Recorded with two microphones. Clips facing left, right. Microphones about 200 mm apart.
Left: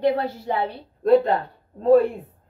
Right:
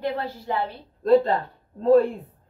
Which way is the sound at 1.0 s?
Centre (ahead or behind).